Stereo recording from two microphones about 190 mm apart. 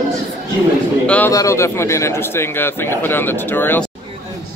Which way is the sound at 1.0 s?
5° left (ahead or behind).